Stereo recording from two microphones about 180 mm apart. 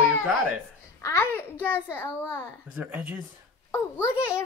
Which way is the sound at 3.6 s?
15° left (ahead or behind).